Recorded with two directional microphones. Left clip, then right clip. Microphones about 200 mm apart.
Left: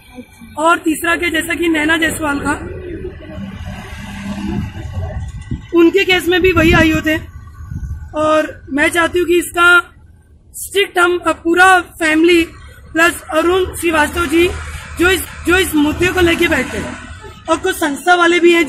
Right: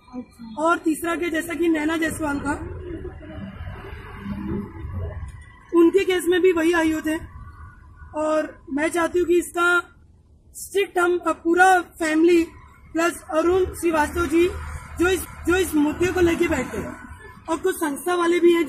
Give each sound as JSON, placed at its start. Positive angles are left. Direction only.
{"t": 0.6, "sound": "a man's voice", "side_deg": -10}
{"t": 5.7, "sound": "speech", "side_deg": 10}
{"t": 8.1, "sound": "speech", "side_deg": 0}
{"t": 11.0, "sound": "a man's voice", "side_deg": -5}
{"t": 17.5, "sound": "a man's voice", "side_deg": 20}